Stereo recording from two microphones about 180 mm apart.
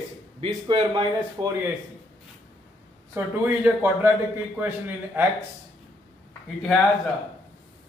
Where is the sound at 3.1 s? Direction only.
10° right (ahead or behind).